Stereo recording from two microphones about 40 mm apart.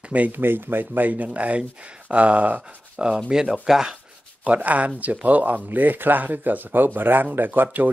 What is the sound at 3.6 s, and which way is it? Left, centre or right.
Speech, centre.